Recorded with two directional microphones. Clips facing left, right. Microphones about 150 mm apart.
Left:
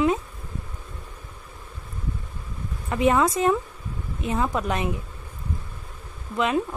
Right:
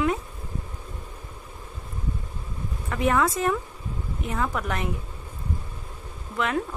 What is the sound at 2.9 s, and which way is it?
A woman's voice, 20° left (ahead or behind).